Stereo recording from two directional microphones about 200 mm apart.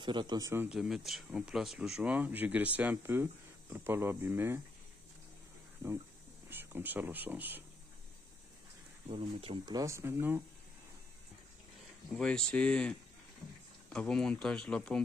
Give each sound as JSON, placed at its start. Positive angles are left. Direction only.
{"t": 0.0, "sound": "speech", "side_deg": -20}
{"t": 6.5, "sound": "speech", "side_deg": -10}
{"t": 9.1, "sound": "speech", "side_deg": -25}
{"t": 12.2, "sound": "speech", "side_deg": 5}